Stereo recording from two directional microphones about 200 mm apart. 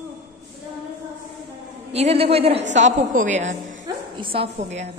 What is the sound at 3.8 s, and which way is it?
A woman's voice, 25° right (ahead or behind).